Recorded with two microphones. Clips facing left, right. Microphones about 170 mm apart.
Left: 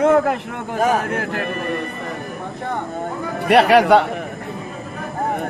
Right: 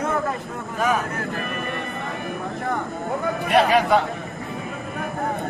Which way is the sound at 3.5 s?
70° left (ahead or behind).